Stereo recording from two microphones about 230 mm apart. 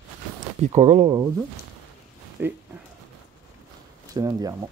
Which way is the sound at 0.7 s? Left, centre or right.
Right.